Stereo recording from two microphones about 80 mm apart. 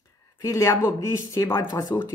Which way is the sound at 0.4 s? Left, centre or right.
Left.